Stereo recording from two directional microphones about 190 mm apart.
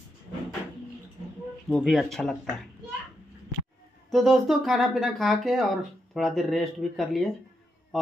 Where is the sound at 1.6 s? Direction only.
5° left (ahead or behind).